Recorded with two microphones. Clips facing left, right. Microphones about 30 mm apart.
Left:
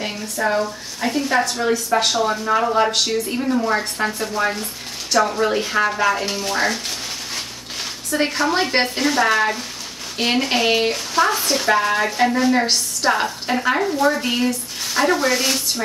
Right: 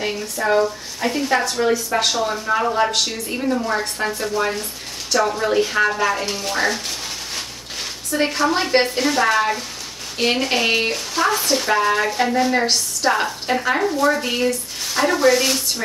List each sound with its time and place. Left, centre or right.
0.0 s speech: centre
8.1 s speech: centre